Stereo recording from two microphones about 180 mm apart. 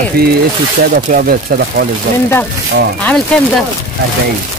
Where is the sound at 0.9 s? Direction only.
55° right (ahead or behind).